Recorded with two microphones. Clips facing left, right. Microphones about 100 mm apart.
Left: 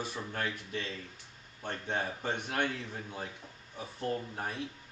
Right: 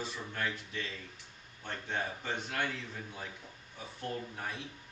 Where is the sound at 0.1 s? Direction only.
40° left (ahead or behind).